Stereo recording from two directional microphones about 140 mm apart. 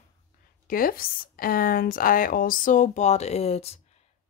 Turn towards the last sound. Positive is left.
turn(degrees=45)  # may be behind; listen again after turning